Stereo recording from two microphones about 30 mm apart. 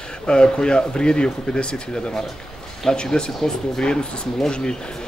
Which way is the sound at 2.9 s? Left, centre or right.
Left.